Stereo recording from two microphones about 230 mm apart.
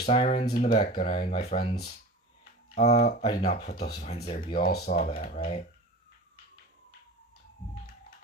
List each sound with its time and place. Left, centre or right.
0.0 s speech: left